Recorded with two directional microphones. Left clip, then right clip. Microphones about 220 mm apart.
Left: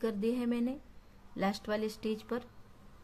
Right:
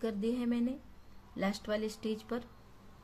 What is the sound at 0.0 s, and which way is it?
Speech, 15° left (ahead or behind).